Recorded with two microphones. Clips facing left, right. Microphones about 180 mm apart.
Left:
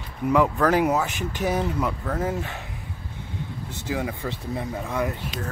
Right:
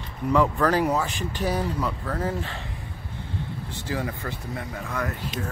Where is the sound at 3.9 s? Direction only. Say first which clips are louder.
Left 2 dB; 10° left (ahead or behind).